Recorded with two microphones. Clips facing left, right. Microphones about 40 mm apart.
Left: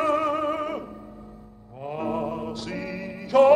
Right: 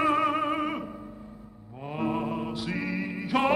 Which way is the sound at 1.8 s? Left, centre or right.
Centre.